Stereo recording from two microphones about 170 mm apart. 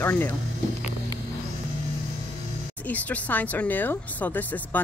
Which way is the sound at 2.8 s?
10° left (ahead or behind).